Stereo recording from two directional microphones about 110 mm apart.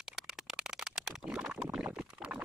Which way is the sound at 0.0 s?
5° right (ahead or behind).